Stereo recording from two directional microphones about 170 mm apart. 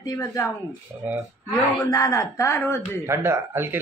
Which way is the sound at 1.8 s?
20° left (ahead or behind).